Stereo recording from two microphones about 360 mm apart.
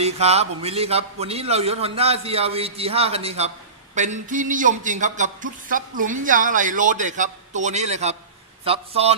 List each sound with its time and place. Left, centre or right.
0.0 s a man's voice: centre